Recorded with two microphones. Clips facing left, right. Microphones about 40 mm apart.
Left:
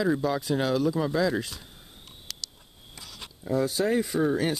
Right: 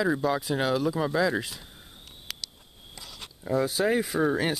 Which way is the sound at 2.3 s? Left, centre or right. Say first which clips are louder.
Right 2 dB; centre.